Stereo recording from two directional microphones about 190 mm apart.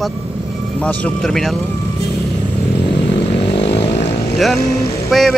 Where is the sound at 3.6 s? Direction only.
65° left (ahead or behind).